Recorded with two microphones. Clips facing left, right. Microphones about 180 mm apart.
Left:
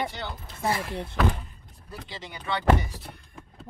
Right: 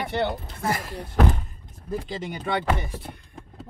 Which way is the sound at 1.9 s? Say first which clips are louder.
Right 10 dB; 50° right (ahead or behind).